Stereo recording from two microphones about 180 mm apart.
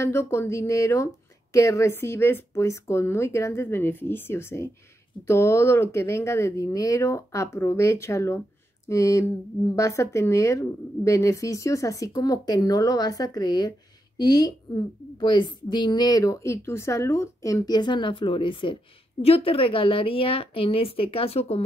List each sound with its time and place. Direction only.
0.0 s a woman's voice: 15° left (ahead or behind); by 21.6 s 35° left (ahead or behind)